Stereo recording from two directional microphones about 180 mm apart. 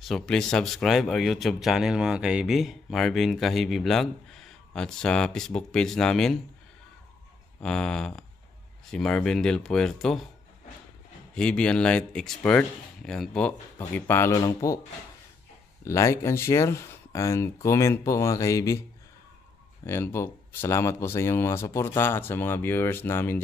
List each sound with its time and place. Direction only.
0.0 s speech: centre (ahead or behind)
7.6 s speech: 5° left (ahead or behind)
11.3 s speech: 5° left (ahead or behind)
15.8 s speech: 15° left (ahead or behind)
19.9 s speech: 15° left (ahead or behind)